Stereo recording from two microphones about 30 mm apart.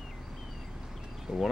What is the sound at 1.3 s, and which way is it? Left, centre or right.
Speech, right.